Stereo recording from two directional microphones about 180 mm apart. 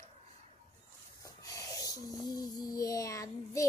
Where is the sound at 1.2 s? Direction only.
20° left (ahead or behind).